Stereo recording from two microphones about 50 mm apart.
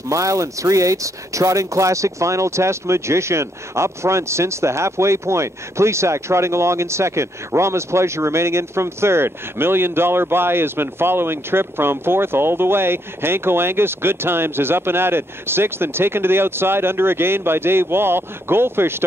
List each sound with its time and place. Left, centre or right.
0.1 s speech: right